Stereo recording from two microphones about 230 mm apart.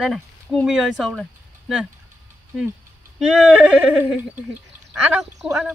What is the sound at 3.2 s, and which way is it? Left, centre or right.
Speech, centre.